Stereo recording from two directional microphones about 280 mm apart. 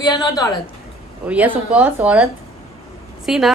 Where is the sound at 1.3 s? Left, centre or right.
Centre.